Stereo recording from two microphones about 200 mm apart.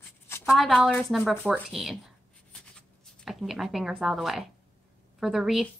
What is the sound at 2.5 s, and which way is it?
Writing, 5° left (ahead or behind).